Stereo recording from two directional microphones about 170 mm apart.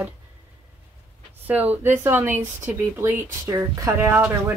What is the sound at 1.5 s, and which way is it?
Speech, 10° right (ahead or behind).